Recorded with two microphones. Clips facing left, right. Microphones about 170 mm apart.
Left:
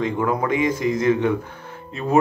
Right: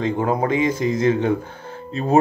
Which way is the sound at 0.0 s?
30° right (ahead or behind).